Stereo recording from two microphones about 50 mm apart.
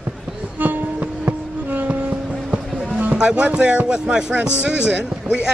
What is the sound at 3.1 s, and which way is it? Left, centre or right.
Speech, right.